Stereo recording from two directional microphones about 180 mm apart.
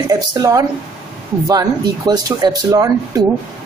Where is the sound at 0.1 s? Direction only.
20° right (ahead or behind).